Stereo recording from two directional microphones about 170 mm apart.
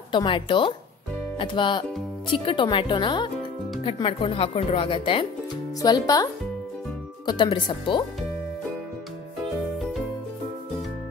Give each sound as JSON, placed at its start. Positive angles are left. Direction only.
{"t": 0.1, "sound": "speech", "side_deg": 30}
{"t": 7.2, "sound": "speech", "side_deg": 25}